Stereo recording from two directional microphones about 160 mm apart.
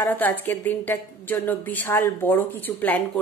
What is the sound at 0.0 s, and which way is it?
A woman's voice, 10° left (ahead or behind).